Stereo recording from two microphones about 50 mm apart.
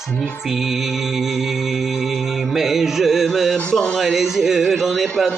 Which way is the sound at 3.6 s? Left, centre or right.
Centre.